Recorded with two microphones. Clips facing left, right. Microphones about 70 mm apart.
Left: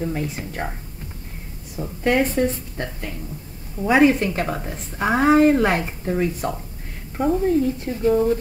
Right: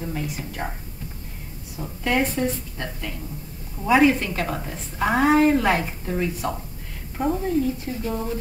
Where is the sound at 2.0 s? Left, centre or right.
Left.